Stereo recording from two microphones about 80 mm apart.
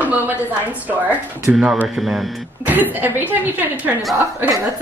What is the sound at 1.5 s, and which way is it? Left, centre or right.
Speech, centre.